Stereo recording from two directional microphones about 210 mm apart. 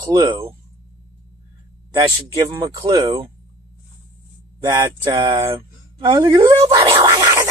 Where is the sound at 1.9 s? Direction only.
20° right (ahead or behind).